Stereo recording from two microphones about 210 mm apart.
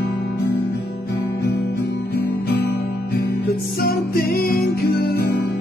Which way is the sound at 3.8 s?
45° left (ahead or behind).